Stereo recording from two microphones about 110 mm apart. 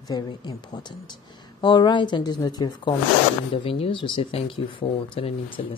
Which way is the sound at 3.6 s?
60° left (ahead or behind).